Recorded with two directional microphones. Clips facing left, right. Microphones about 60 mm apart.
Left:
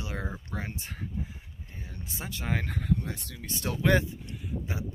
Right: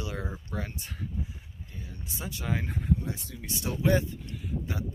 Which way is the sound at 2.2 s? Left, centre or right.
Left.